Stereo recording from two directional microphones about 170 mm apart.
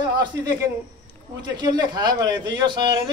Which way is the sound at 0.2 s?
20° right (ahead or behind).